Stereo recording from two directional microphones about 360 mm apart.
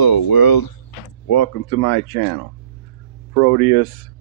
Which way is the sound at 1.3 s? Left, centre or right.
Left.